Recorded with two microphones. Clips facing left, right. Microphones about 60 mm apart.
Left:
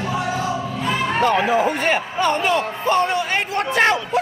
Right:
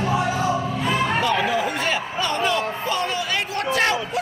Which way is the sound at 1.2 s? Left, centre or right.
Left.